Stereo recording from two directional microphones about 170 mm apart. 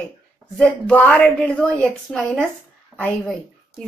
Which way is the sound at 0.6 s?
5° left (ahead or behind).